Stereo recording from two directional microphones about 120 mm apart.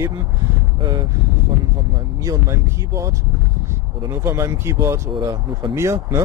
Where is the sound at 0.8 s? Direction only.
35° right (ahead or behind).